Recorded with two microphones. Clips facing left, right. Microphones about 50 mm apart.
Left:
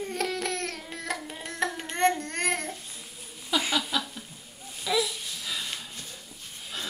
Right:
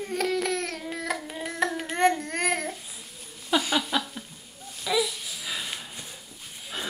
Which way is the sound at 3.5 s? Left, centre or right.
Right.